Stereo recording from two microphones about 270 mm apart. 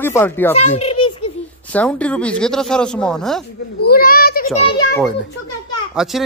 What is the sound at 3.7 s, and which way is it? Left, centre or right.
Children playing, left.